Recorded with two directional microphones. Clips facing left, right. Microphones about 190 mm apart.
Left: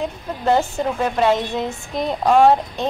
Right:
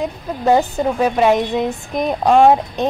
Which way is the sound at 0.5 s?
15° right (ahead or behind).